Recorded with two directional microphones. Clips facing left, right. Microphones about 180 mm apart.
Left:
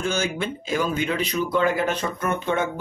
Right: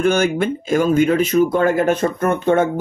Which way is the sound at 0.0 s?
55° right (ahead or behind).